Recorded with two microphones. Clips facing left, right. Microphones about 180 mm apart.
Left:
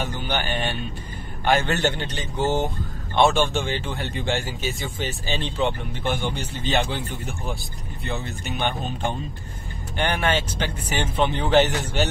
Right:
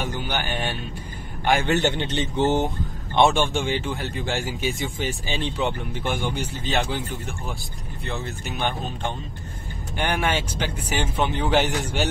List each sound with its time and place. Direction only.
0.0 s speech: 10° right (ahead or behind)
8.1 s speech: centre (ahead or behind)